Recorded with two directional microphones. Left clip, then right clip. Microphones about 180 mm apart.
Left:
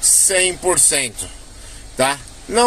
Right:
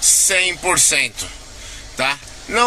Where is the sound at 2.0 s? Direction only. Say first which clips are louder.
Left 2 dB; 30° left (ahead or behind).